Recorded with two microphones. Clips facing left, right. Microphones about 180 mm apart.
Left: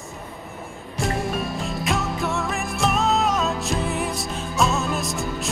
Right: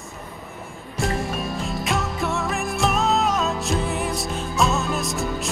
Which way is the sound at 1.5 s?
Centre (ahead or behind).